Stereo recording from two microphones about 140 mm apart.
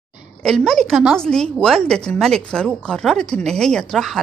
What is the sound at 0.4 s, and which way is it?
A woman's voice, 5° left (ahead or behind).